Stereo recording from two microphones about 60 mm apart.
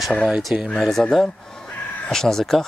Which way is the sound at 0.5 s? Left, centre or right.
Centre.